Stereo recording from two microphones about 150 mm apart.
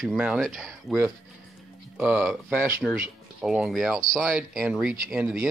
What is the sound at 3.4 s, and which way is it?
Speech, 5° right (ahead or behind).